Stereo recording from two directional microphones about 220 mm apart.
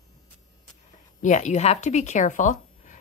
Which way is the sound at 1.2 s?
35° left (ahead or behind).